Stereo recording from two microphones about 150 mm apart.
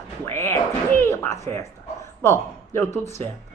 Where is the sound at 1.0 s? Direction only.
15° left (ahead or behind).